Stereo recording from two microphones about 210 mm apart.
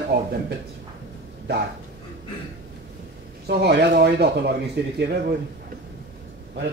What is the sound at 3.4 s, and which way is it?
Speech, 50° right (ahead or behind).